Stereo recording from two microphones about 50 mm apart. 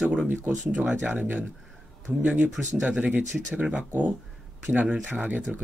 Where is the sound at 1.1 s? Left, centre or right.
Right.